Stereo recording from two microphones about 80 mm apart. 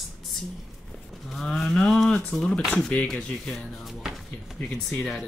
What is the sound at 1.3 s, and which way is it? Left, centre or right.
Speech, centre.